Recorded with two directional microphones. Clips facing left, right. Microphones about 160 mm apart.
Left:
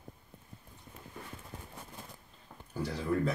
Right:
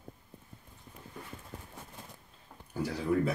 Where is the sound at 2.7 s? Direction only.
5° right (ahead or behind).